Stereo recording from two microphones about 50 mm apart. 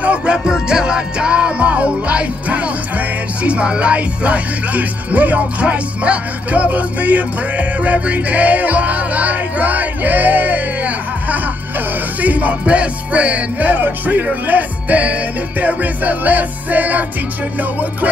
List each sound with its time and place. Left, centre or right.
0.0 s music: right